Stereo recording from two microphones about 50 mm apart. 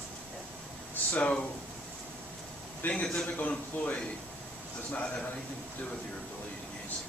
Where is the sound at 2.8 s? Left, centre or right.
Left.